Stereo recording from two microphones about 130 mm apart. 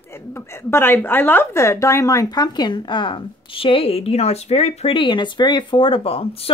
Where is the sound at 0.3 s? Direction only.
20° left (ahead or behind).